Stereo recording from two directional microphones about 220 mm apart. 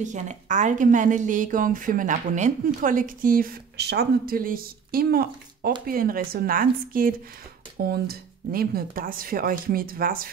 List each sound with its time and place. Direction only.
0.0 s a woman's voice: 35° right (ahead or behind)